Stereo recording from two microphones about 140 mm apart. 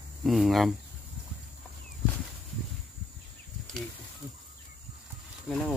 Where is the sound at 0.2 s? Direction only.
Centre (ahead or behind).